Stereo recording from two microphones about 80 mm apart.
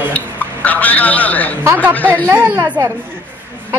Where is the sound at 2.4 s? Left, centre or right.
Right.